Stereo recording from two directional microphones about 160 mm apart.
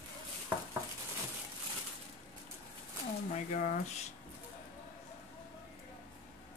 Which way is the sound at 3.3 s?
50° left (ahead or behind).